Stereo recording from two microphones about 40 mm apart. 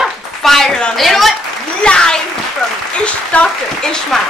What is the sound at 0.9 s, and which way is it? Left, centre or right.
Speech, centre.